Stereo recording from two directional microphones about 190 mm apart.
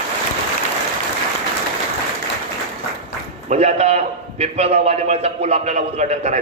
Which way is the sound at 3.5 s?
35° right (ahead or behind).